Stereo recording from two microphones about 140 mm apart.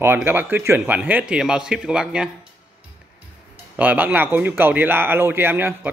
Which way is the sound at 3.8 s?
10° right (ahead or behind).